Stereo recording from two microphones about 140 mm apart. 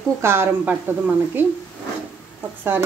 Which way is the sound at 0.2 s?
15° right (ahead or behind).